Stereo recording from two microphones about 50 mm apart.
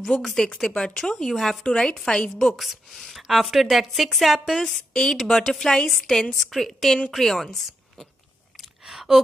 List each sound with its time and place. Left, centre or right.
0.2 s a woman's voice: centre
0.7 s a woman's voice: centre
2.5 s speech: centre
4.6 s a woman's voice: centre
8.8 s a sound: centre